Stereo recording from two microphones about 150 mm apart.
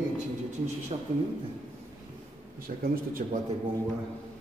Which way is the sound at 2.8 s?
65° right (ahead or behind).